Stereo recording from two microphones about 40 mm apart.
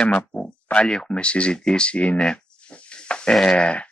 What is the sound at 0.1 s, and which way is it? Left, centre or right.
Speech, left.